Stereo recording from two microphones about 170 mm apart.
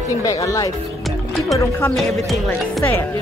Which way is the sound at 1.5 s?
15° left (ahead or behind).